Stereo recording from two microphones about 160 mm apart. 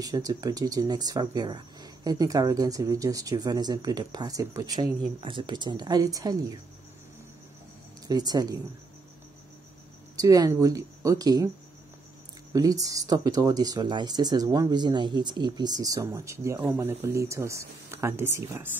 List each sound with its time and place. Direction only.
0.0 s speech: 25° right (ahead or behind)
8.1 s speech: 25° right (ahead or behind)
10.1 s speech: 20° right (ahead or behind)
12.5 s speech: 20° right (ahead or behind)